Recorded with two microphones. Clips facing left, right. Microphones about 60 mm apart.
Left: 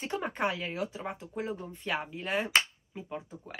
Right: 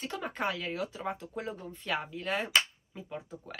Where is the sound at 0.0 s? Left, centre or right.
Left.